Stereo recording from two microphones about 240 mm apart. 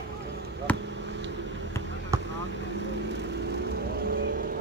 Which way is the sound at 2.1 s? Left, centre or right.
Centre.